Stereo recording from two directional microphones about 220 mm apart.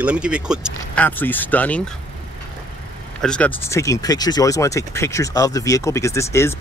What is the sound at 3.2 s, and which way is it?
Speech, 5° left (ahead or behind).